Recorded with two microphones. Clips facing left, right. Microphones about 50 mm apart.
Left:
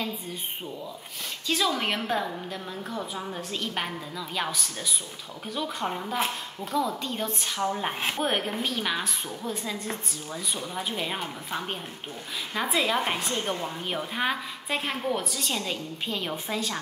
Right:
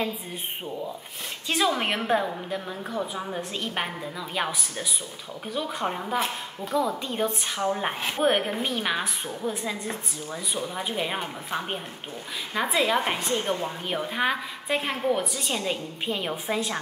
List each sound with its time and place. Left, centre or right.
1.5 s a woman's voice: right